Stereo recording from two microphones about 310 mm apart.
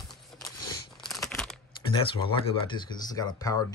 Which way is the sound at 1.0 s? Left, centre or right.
Centre.